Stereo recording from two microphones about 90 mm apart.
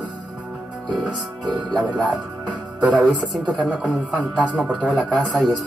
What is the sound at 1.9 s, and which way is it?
Speech, 10° left (ahead or behind).